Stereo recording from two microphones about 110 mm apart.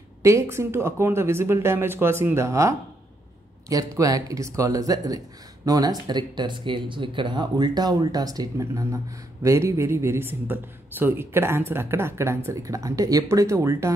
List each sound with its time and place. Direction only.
0.2 s speech: 25° right (ahead or behind)